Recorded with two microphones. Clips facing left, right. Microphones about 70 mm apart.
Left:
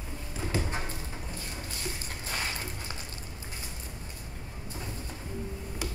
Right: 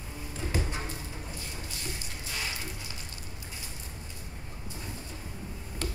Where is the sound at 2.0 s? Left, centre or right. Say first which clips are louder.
Left 3 dB; left.